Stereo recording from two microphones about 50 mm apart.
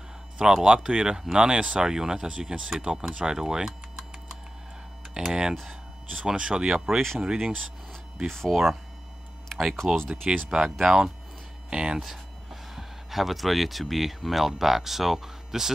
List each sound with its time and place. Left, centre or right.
0.4 s speech: centre
8.3 s speech: centre
9.8 s speech: centre
10.3 s speech: centre
10.8 s speech: centre
11.7 s speech: centre
12.0 s speech: centre